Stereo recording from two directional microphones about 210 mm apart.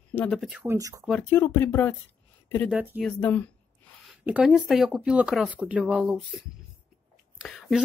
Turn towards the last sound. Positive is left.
turn(degrees=0)  # may be behind; listen again after turning